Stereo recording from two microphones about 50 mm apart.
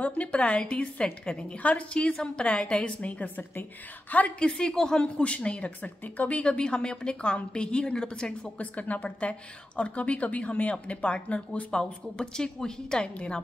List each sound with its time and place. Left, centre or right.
0.0 s a woman's voice: left
4.4 s a woman's voice: centre
11.8 s a woman's voice: centre